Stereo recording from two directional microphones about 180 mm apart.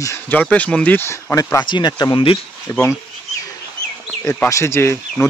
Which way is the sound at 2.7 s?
15° left (ahead or behind).